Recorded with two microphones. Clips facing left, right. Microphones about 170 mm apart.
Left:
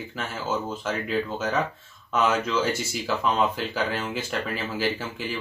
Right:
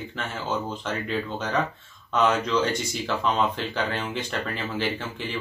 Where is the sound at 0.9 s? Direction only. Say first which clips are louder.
Left 3 dB; 5° left (ahead or behind).